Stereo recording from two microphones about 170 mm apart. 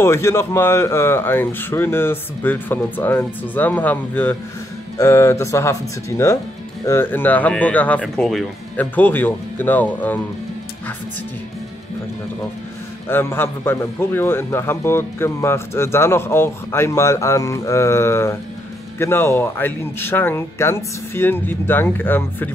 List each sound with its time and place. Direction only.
0.0 s a man's voice: 15° left (ahead or behind)
13.1 s a man's voice: 15° left (ahead or behind)